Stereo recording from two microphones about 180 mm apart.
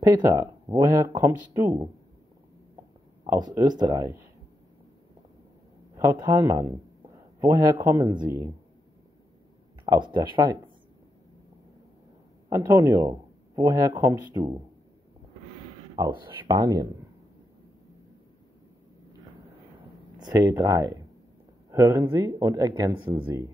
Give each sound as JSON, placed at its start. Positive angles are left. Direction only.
{"t": 0.0, "sound": "speech", "side_deg": -20}
{"t": 3.5, "sound": "speech", "side_deg": -25}
{"t": 5.9, "sound": "speech", "side_deg": -20}
{"t": 9.8, "sound": "speech", "side_deg": -25}
{"t": 12.4, "sound": "speech", "side_deg": -15}
{"t": 16.0, "sound": "speech", "side_deg": -25}
{"t": 20.2, "sound": "speech", "side_deg": -20}